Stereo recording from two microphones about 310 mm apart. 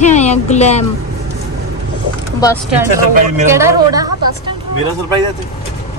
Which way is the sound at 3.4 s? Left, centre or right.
Centre.